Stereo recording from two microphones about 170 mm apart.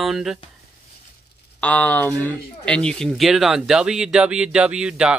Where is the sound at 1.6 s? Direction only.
10° left (ahead or behind).